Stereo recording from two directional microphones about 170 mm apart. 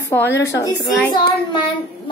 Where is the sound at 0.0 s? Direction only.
15° left (ahead or behind).